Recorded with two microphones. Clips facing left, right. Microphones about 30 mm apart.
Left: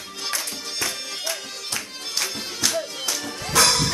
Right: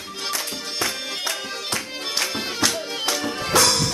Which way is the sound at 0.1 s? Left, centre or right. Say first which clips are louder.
Right 1 dB; centre.